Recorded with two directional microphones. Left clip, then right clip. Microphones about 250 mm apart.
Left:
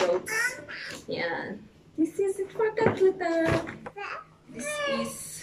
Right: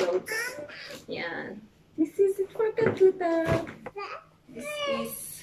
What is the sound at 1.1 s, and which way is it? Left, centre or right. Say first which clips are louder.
Speech: left 4 dB; centre.